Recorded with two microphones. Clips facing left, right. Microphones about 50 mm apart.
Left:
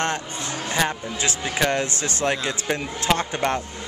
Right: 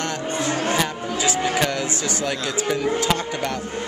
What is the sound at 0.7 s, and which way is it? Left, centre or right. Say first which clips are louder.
Speech: right 1 dB; left.